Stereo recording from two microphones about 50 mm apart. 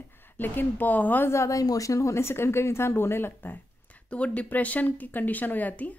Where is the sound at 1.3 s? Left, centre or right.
Left.